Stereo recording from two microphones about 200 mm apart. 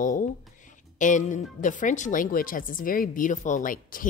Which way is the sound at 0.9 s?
40° left (ahead or behind).